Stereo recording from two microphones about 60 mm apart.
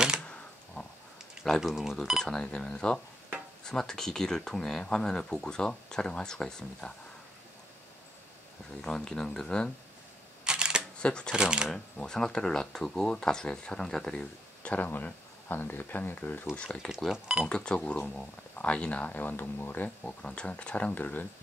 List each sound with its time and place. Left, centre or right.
0.8 s a sound: left
1.4 s speech: centre
2.1 s speech: centre
8.8 s speech: centre
10.4 s camera: centre
11.0 s speech: centre
11.3 s speech: centre
11.7 s speech: centre
14.6 s a sound: left
14.9 s speech: left
17.1 s speech: centre
17.5 s speech: centre; by 19.9 s left
20.0 s speech: centre